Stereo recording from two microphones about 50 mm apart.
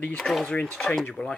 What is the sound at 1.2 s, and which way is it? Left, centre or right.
Speech, centre.